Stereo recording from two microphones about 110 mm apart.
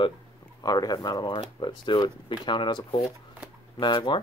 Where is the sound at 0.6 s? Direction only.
35° left (ahead or behind).